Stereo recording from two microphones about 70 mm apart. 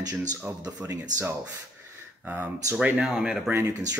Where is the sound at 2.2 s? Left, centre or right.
Right.